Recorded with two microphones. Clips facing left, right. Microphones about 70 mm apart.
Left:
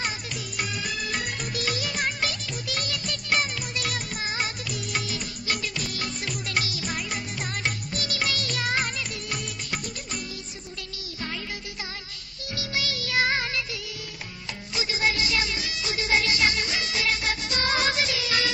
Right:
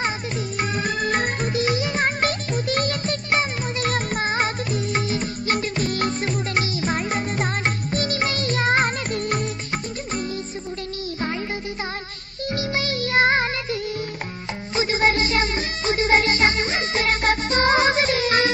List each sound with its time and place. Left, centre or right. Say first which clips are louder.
0.6 s music: right 7 dB; right
1.5 s music: right 7 dB; right
12.5 s music: right 6 dB; right
14.8 s music: right 7 dB; right